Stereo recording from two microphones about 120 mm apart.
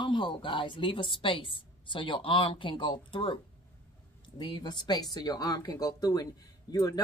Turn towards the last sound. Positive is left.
turn(degrees=30)  # may be behind; listen again after turning